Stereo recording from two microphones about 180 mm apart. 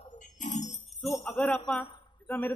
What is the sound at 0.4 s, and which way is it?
Jingle bell, 40° left (ahead or behind).